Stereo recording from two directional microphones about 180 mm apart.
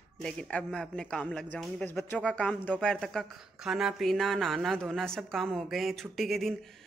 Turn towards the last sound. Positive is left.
turn(degrees=0)  # may be behind; listen again after turning